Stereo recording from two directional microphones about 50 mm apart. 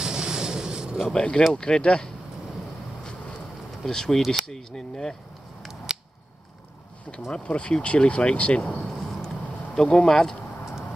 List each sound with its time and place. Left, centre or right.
0.0 s vehicle: centre
1.1 s speech: centre
3.8 s speech: centre
7.1 s speech: centre
8.7 s a sound: centre
9.8 s speech: centre